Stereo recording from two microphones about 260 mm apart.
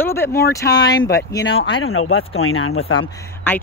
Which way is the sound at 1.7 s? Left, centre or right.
Left.